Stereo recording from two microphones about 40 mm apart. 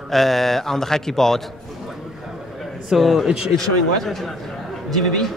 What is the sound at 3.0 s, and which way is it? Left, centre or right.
Speech, centre.